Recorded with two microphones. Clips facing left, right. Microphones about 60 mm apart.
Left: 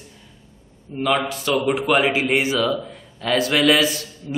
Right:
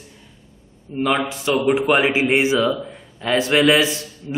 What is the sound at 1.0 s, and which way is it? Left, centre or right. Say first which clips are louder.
A man's voice: right 1 dB; centre.